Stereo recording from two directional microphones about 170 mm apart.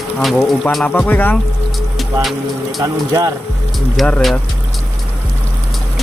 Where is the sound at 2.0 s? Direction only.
Centre (ahead or behind).